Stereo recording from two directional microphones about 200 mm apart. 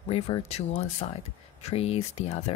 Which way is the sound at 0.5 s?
30° left (ahead or behind).